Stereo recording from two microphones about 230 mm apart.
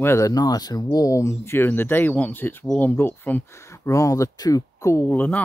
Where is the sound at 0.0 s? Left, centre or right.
Centre.